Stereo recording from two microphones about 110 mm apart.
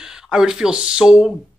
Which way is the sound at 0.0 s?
5° right (ahead or behind).